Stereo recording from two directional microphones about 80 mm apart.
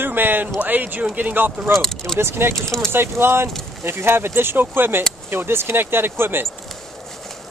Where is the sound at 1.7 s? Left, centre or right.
Centre.